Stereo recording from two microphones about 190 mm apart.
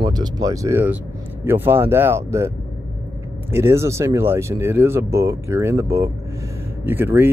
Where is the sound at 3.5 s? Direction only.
15° right (ahead or behind).